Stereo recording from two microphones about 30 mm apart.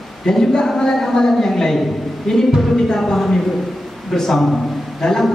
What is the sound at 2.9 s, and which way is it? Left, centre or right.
A woman's voice, centre.